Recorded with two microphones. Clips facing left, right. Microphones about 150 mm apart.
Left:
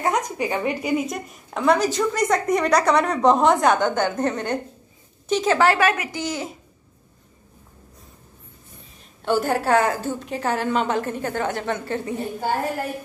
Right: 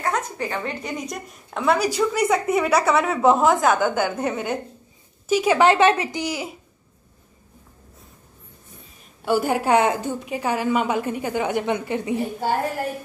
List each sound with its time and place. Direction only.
0.0 s a woman's voice: 15° left (ahead or behind); by 6.2 s 25° right (ahead or behind)
6.2 s a woman's voice: 10° right (ahead or behind)
9.2 s a woman's voice: 10° right (ahead or behind)